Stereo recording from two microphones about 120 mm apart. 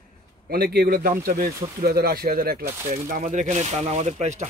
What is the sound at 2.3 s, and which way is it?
Speech, 90° right.